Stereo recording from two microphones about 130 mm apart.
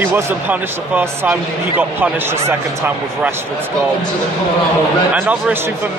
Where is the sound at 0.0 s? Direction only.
15° right (ahead or behind).